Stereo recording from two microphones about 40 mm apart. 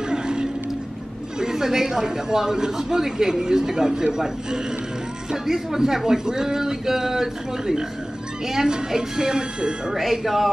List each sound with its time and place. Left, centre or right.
0.1 s a sound: centre
1.4 s speech: centre
10.2 s a man's voice: centre